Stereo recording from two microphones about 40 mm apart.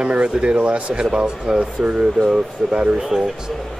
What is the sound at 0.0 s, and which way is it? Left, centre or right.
Speech, right.